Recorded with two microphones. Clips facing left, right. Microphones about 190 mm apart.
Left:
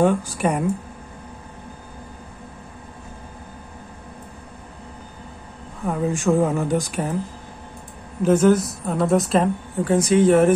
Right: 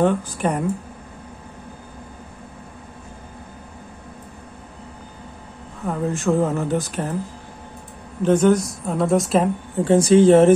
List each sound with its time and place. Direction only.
0.0 s speech: 10° left (ahead or behind)
5.9 s speech: 15° left (ahead or behind)
8.2 s a woman's voice: 5° left (ahead or behind)
9.8 s speech: 30° right (ahead or behind)